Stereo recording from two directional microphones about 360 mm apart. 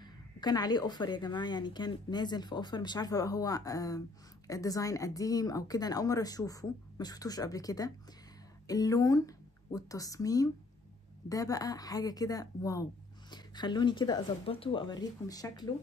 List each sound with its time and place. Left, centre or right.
0.0 s speech: centre